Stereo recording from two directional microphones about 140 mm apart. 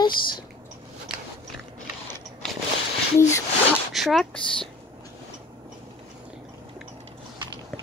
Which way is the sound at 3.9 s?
Centre (ahead or behind).